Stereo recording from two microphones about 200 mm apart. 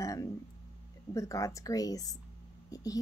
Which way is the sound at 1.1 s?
15° left (ahead or behind).